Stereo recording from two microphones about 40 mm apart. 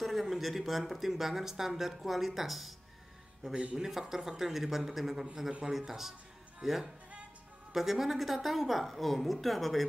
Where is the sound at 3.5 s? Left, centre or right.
Right.